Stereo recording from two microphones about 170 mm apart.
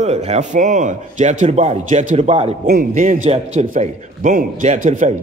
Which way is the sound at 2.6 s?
60° right (ahead or behind).